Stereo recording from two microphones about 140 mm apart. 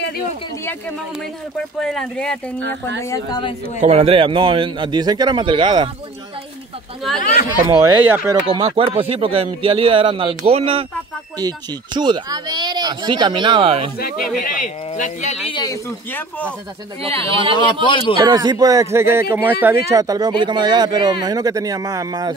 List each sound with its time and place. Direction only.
1.8 s speech: 5° left (ahead or behind)
2.8 s speech: 20° left (ahead or behind)
3.8 s speech: 45° right (ahead or behind)
7.6 s speech: 20° right (ahead or behind)
8.4 s speech: 35° right (ahead or behind)
11.3 s speech: 30° right (ahead or behind)
13.9 s speech: 85° left; by 15.3 s 65° left (ahead or behind)
15.4 s a man's voice: 35° left (ahead or behind)
15.7 s speech: 15° left (ahead or behind)
17.0 s speech: 40° right (ahead or behind)
17.6 s a man's voice: 35° left (ahead or behind)
18.2 s speech: 30° right (ahead or behind)